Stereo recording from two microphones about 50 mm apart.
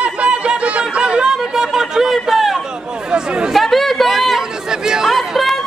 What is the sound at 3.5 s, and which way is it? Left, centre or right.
Chatter, centre.